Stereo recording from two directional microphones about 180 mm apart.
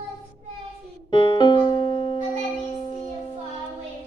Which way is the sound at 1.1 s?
25° left (ahead or behind).